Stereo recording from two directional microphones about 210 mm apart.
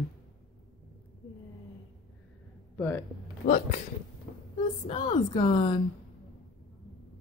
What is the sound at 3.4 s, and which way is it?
Speech, 35° left (ahead or behind).